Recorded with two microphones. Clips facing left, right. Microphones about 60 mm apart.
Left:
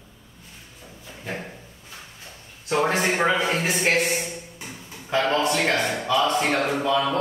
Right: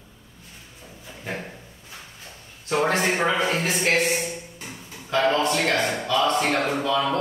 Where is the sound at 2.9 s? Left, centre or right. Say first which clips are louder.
Left 1 dB; centre.